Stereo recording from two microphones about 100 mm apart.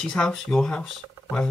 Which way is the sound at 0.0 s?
5° left (ahead or behind).